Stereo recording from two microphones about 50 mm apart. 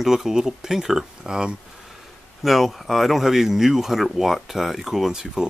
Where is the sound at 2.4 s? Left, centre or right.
Centre.